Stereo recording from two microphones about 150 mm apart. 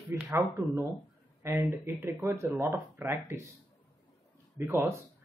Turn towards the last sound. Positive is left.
turn(degrees=-15)  # may be behind; listen again after turning